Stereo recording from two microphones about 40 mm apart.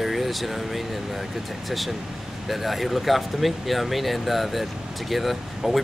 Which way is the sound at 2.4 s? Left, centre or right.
Centre.